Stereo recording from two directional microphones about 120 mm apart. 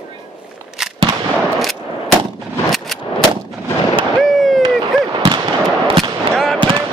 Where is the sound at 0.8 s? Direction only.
5° right (ahead or behind).